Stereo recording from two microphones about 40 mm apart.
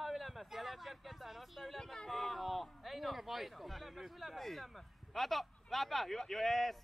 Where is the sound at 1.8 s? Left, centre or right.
Centre.